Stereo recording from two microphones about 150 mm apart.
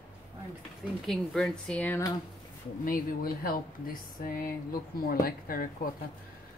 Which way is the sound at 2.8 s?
70° left (ahead or behind).